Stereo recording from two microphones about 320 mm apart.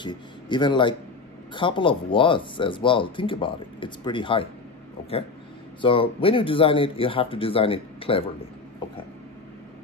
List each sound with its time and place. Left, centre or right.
0.0 s speech: centre
5.8 s speech: centre